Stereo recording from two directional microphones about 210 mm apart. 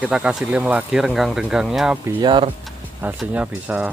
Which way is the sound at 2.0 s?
20° right (ahead or behind).